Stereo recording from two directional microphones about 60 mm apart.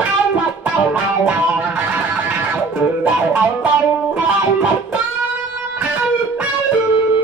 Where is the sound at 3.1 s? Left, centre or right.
Right.